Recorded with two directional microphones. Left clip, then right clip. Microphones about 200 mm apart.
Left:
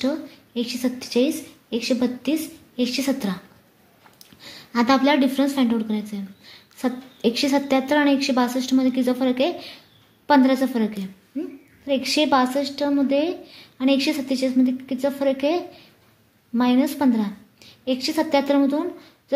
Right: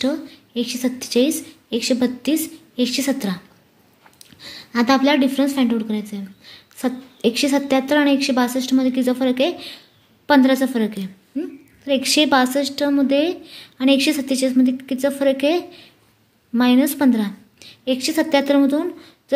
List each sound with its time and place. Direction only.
0.0 s a woman's voice: 20° right (ahead or behind)